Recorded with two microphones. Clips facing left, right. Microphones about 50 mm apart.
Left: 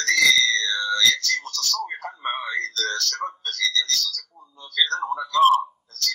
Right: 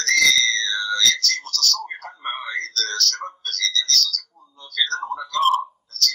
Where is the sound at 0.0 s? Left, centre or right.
Left.